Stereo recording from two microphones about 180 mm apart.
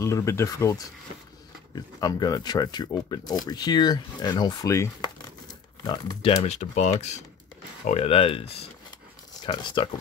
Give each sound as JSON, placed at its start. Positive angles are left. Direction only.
{"t": 0.0, "sound": "speech", "side_deg": 15}
{"t": 6.4, "sound": "speech", "side_deg": 40}